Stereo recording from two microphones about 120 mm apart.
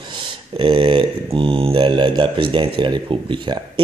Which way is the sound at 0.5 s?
50° right (ahead or behind).